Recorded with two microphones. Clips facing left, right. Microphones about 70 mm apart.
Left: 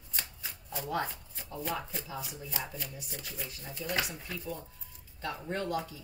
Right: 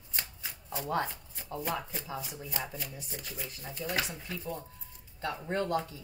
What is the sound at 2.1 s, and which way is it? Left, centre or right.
Speech, centre.